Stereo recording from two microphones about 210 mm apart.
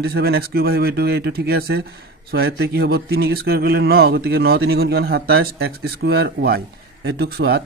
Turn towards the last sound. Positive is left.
turn(degrees=-50)  # may be behind; listen again after turning